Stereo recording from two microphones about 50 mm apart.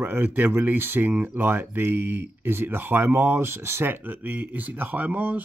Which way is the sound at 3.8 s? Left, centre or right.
Right.